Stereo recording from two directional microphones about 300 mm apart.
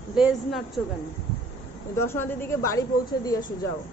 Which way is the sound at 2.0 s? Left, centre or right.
Centre.